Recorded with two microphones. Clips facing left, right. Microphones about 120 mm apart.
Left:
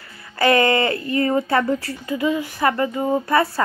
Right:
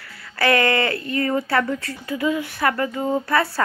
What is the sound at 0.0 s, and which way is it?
Speech, 20° left (ahead or behind).